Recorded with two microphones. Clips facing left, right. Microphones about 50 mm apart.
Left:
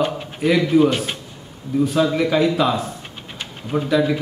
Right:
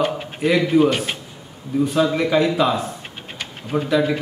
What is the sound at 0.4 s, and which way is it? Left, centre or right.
A man's voice, centre.